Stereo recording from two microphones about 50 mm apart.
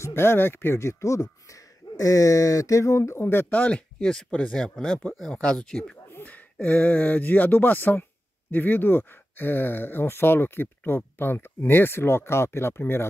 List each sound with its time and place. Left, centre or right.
0.0 s speech: left
0.7 s speech: left
3.4 s speech: left
4.0 s speech: centre
4.3 s speech: left
6.2 s speech: left